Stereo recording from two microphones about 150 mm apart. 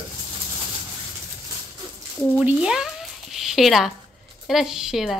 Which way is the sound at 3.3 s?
Centre (ahead or behind).